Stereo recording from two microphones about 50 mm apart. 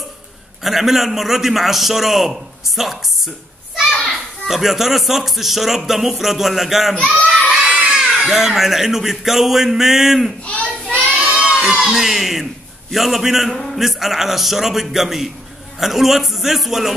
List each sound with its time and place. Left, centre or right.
0.7 s a man's voice: centre
4.5 s a man's voice: centre
7.2 s a child's voice: left
7.7 s children shouting: centre
8.3 s a man's voice: centre
10.4 s a sound: left
11.1 s a sound: right
11.9 s a man's voice: centre